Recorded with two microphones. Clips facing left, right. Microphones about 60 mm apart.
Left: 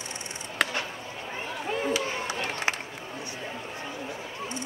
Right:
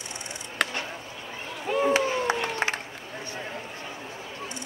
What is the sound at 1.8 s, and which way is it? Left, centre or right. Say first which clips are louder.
Crowd: right 8 dB; right.